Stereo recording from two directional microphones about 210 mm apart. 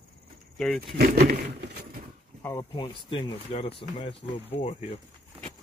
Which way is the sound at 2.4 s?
20° left (ahead or behind).